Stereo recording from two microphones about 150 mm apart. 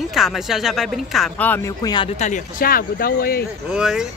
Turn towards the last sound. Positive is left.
turn(degrees=-5)  # may be behind; listen again after turning